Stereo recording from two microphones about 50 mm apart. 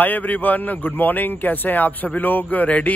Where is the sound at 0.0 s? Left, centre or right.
Left.